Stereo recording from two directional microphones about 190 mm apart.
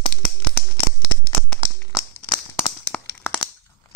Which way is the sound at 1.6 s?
20° left (ahead or behind).